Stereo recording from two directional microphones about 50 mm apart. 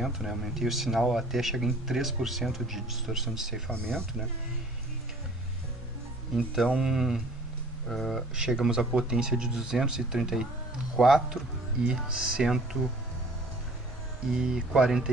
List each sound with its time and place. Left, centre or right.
0.0 s speech: centre
3.7 s speech: centre
6.3 s speech: centre
7.9 s speech: centre
8.4 s speech: centre
11.9 s speech: centre
14.3 s speech: centre